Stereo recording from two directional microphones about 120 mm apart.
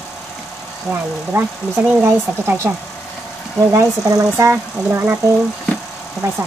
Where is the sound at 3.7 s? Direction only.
30° right (ahead or behind).